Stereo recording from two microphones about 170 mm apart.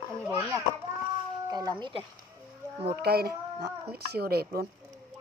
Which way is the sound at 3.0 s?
65° right (ahead or behind).